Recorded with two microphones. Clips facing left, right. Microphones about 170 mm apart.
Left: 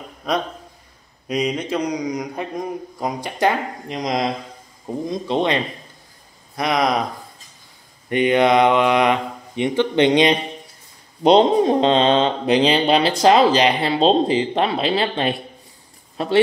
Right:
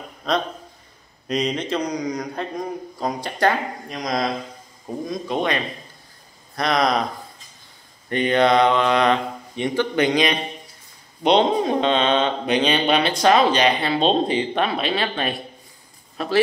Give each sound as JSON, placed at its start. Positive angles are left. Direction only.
{"t": 0.2, "sound": "a man's voice", "side_deg": 15}
{"t": 8.1, "sound": "a man's voice", "side_deg": 15}